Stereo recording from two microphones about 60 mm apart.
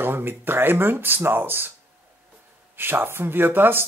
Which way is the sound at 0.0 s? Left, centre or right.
Right.